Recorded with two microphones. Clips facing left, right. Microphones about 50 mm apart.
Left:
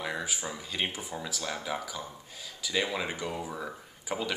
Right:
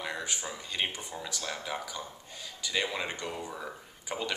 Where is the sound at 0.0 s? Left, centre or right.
Centre.